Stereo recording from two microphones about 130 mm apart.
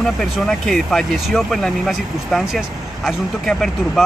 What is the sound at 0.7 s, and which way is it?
Speech, 5° left (ahead or behind).